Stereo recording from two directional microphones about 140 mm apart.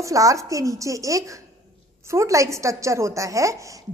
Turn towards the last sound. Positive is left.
turn(degrees=-20)  # may be behind; listen again after turning